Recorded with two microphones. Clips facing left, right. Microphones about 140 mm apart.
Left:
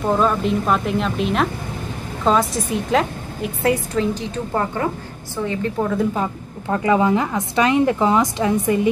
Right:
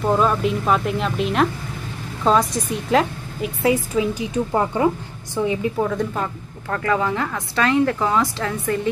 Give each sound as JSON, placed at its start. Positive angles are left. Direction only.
{"t": 0.0, "sound": "a woman's voice", "side_deg": 0}
{"t": 5.8, "sound": "a woman's voice", "side_deg": 0}
{"t": 6.1, "sound": "a woman's voice", "side_deg": 15}